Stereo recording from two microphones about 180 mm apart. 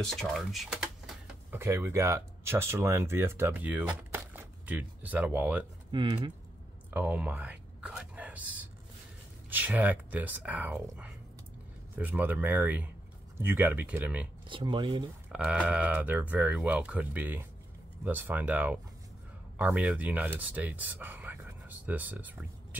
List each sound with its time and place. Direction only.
0.0 s a sound: centre (ahead or behind)
1.6 s speech: 15° right (ahead or behind)
5.9 s speech: 30° right (ahead or behind)
6.9 s a sound: 10° right (ahead or behind)
9.5 s speech: 10° right (ahead or behind)
14.5 s speech: 25° right (ahead or behind)
15.3 s speech: 5° right (ahead or behind)